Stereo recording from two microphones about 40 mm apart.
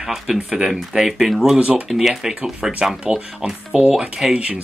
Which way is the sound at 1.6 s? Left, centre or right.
Right.